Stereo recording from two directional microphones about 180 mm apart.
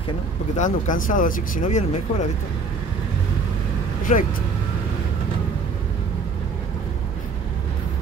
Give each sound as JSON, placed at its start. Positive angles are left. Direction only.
{"t": 0.6, "sound": "speech", "side_deg": 45}
{"t": 4.1, "sound": "speech", "side_deg": 40}